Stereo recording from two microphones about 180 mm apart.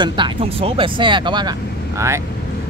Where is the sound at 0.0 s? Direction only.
25° right (ahead or behind).